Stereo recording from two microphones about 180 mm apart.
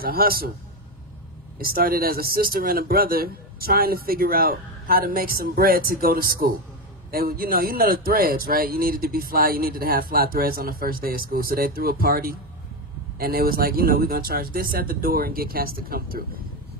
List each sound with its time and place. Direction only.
0.0 s a man's voice: 55° right (ahead or behind)
1.6 s a man's voice: 55° right (ahead or behind)